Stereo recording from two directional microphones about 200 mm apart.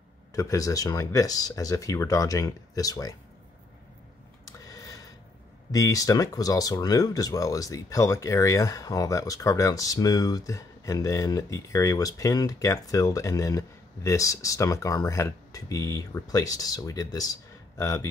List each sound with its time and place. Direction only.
0.3 s speech: 15° left (ahead or behind)
4.5 s a sound: 15° left (ahead or behind)
5.7 s speech: 15° left (ahead or behind)